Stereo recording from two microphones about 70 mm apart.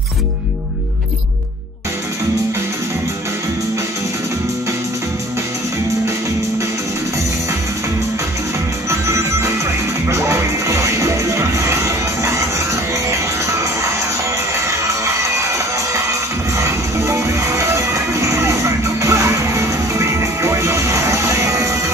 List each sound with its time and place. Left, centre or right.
8.8 s music: right